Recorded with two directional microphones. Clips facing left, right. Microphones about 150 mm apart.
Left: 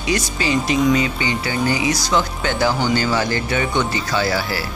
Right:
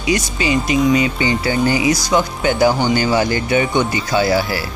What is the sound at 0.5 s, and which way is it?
Speech, 10° right (ahead or behind).